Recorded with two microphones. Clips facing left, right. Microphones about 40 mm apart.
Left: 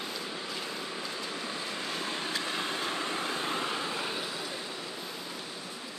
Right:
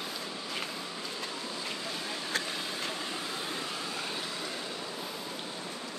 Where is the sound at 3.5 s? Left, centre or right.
Left.